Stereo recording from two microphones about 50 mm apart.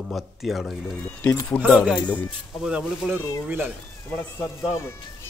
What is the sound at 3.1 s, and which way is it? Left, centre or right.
Speech, right.